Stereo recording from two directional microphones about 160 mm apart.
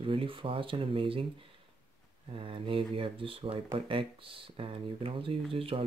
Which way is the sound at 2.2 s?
35° right (ahead or behind).